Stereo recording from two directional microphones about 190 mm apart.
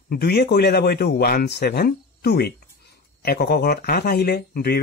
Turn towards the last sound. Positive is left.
turn(degrees=55)  # may be behind; listen again after turning